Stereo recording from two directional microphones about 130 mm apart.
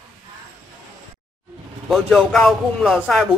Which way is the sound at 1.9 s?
Centre (ahead or behind).